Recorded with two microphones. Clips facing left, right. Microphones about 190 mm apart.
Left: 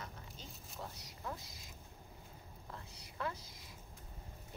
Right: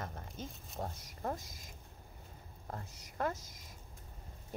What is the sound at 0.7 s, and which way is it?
Speech, 50° right (ahead or behind).